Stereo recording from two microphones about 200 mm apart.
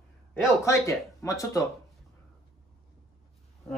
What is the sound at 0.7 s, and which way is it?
Speech, 15° left (ahead or behind).